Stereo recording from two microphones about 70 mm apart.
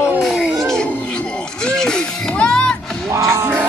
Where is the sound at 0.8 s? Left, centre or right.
Centre.